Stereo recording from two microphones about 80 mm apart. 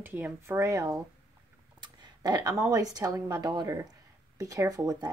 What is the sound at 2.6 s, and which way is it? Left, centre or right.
Speech, right.